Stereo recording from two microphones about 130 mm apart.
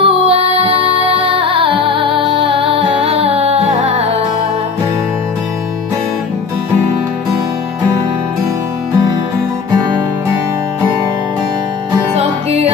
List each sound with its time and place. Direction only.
0.0 s music: 50° right (ahead or behind)
12.2 s music: 50° right (ahead or behind)